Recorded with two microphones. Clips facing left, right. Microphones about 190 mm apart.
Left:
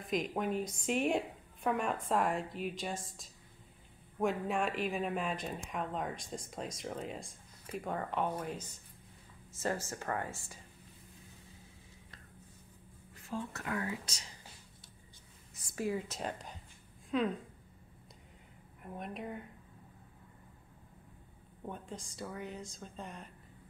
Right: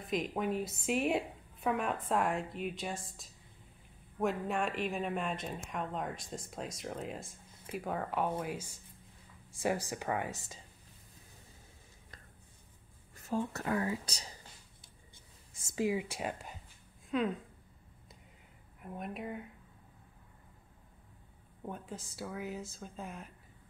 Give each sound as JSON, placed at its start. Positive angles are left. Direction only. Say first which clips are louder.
{"t": 0.0, "sound": "a woman's voice", "louder": "even", "side_deg": 0}
{"t": 13.1, "sound": "a woman's voice", "louder": "right 5 dB", "side_deg": -40}
{"t": 15.5, "sound": "a woman's voice", "louder": "right 3 dB", "side_deg": -20}
{"t": 18.8, "sound": "a woman's voice", "louder": "right 1 dB", "side_deg": 0}
{"t": 21.6, "sound": "a woman's voice", "louder": "right 1 dB", "side_deg": -5}